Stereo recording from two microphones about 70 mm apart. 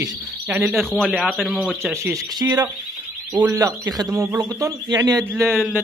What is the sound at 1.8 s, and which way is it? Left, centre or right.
Speech, right.